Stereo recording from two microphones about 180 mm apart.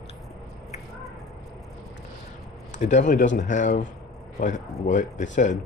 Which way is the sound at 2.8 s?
40° left (ahead or behind).